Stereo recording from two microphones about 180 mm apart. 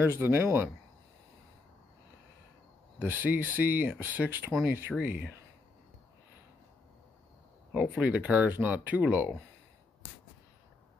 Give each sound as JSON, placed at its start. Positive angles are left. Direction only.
{"t": 0.0, "sound": "speech", "side_deg": -10}
{"t": 3.0, "sound": "speech", "side_deg": -10}
{"t": 8.0, "sound": "speech", "side_deg": -5}
{"t": 10.0, "sound": "a sound", "side_deg": 90}